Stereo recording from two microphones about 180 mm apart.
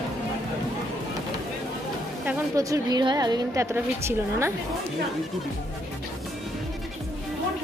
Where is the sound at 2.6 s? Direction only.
20° right (ahead or behind).